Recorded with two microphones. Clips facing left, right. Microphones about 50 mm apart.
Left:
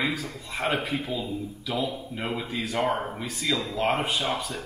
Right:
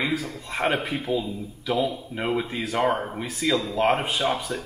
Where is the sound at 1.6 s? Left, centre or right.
Centre.